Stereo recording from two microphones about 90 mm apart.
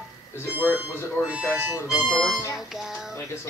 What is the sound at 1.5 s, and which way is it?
Speech, 15° right (ahead or behind).